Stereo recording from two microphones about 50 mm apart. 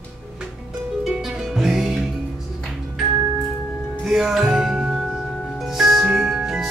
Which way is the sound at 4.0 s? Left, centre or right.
Centre.